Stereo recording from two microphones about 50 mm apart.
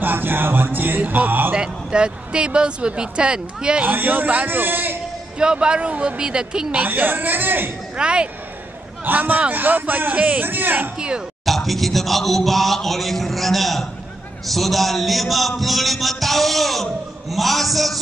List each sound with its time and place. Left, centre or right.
0.0 s music: right
1.5 s speech: centre
3.8 s a man's voice: right
5.4 s speech: centre
6.8 s a man's voice: right
7.9 s speech: right
9.0 s a man's voice: right
10.4 s a man's voice: right
11.0 s speech: centre
11.4 s a man's voice: centre